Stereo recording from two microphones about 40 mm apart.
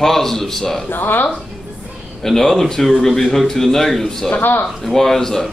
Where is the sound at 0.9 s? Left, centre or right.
Left.